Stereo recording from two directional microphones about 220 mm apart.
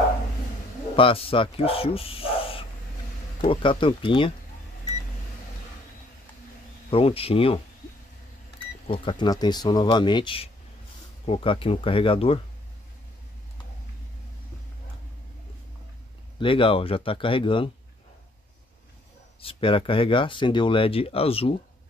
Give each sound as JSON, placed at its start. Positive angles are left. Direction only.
{"t": 0.9, "sound": "speech", "side_deg": 25}
{"t": 6.9, "sound": "speech", "side_deg": 25}
{"t": 8.8, "sound": "speech", "side_deg": 20}
{"t": 16.3, "sound": "speech", "side_deg": 25}
{"t": 19.4, "sound": "speech", "side_deg": 25}